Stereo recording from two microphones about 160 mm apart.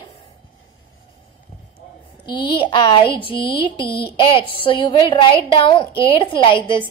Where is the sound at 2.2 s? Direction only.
30° left (ahead or behind).